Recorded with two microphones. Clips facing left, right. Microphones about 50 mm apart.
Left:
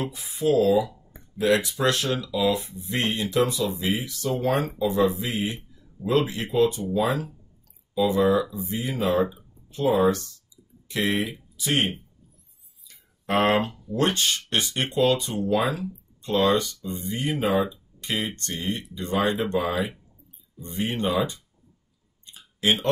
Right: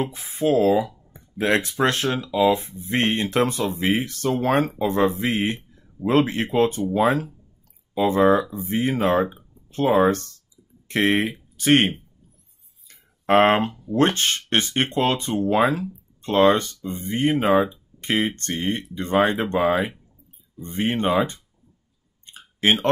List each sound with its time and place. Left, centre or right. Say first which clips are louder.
0.0 s speech: right 3 dB; right
12.8 s speech: right 8 dB; right
22.2 s clicking: right 4 dB; right